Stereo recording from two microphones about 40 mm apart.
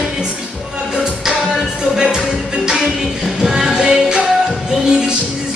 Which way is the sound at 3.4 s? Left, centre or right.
Centre.